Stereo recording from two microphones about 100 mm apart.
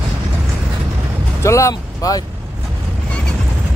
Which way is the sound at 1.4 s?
30° left (ahead or behind).